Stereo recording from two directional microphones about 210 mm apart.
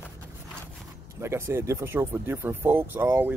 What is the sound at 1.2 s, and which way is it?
Speech, 15° right (ahead or behind).